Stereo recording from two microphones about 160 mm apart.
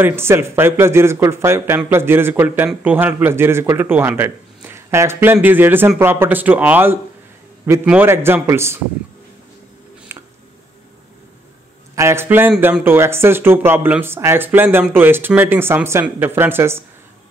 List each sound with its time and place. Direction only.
0.0 s a man's voice: 15° right (ahead or behind)
10.1 s a sound: 15° right (ahead or behind)
11.9 s a man's voice: 15° right (ahead or behind)